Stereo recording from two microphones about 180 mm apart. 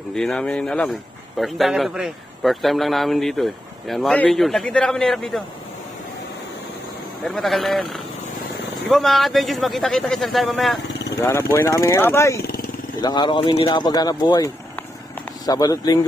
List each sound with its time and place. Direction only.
0.1 s speech: 5° left (ahead or behind)
7.2 s speech: centre (ahead or behind)
11.1 s speech: 15° left (ahead or behind)